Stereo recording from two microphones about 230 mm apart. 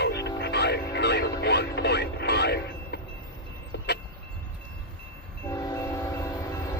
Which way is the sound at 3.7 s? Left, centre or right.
Left.